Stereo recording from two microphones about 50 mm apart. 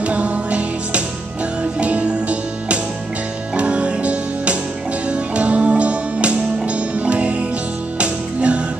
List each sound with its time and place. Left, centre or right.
0.0 s music: right